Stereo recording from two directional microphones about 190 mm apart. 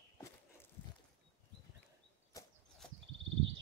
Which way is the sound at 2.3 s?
20° left (ahead or behind).